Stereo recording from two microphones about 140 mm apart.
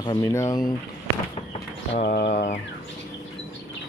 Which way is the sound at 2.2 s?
60° left (ahead or behind).